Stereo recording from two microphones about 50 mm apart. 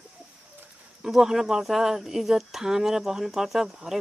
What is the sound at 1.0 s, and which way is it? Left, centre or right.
Speech, centre.